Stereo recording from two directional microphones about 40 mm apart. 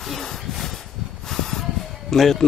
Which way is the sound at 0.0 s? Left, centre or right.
Centre.